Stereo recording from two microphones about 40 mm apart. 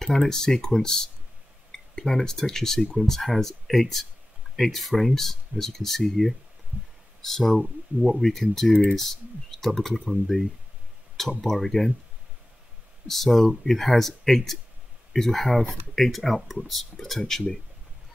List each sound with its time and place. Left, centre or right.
0.0 s speech: centre
6.7 s heart sounds: right
7.2 s speech: centre
13.0 s speech: centre